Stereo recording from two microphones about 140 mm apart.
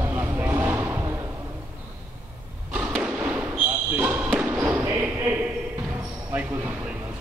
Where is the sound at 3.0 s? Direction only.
10° right (ahead or behind).